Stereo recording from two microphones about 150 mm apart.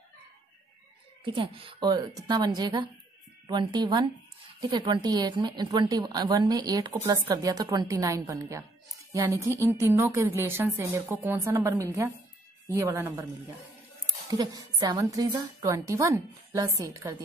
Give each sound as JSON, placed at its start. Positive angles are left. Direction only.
{"t": 1.2, "sound": "a woman's voice", "side_deg": -35}
{"t": 14.3, "sound": "a woman's voice", "side_deg": -25}